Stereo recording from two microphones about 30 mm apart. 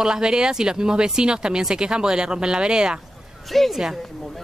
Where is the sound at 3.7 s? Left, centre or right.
Centre.